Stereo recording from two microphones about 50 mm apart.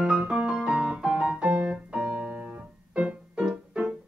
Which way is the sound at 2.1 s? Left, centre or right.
Right.